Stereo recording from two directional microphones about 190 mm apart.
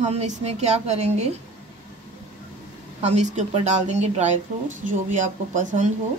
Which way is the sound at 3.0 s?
35° right (ahead or behind).